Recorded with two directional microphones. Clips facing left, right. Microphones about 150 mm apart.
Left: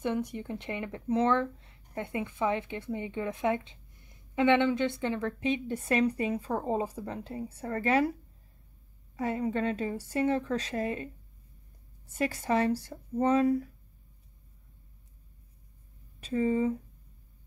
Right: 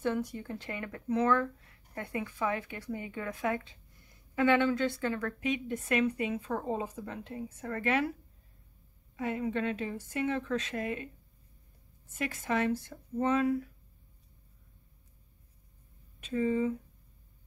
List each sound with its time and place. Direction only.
0.0 s a woman's voice: 20° left (ahead or behind)
12.1 s a woman's voice: 35° left (ahead or behind)
16.2 s a woman's voice: 35° left (ahead or behind)